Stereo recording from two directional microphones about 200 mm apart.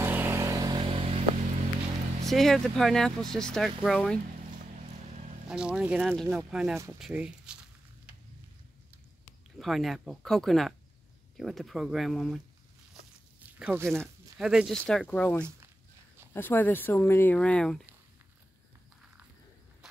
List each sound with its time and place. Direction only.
0.0 s vehicle: 10° right (ahead or behind); by 1.2 s 25° right (ahead or behind)
2.2 s speech: centre (ahead or behind)
5.5 s speech: 5° right (ahead or behind)
9.6 s speech: centre (ahead or behind)
13.6 s speech: 10° right (ahead or behind)